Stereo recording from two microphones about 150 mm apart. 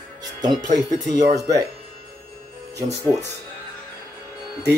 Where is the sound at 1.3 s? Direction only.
25° right (ahead or behind).